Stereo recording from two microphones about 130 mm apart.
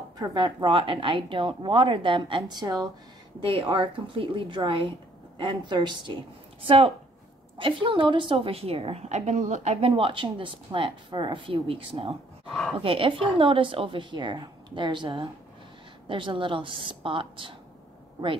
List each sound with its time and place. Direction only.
0.2 s a woman's voice: 35° right (ahead or behind)
7.5 s a woman's voice: 40° right (ahead or behind)
12.4 s speech: centre (ahead or behind)
12.7 s a woman's voice: 45° right (ahead or behind)